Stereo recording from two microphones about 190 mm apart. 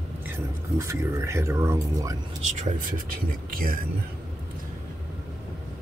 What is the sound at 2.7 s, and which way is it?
Speech, 45° right (ahead or behind).